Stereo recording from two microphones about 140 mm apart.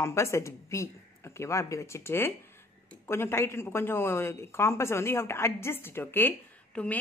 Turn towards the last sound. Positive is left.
turn(degrees=10)  # may be behind; listen again after turning